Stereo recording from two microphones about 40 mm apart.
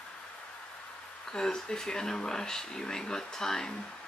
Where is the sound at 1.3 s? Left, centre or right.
Centre.